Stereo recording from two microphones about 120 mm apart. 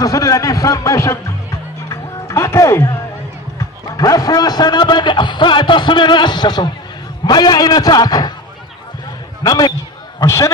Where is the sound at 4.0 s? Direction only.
30° left (ahead or behind).